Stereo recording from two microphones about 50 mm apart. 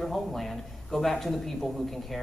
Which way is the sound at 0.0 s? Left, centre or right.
Centre.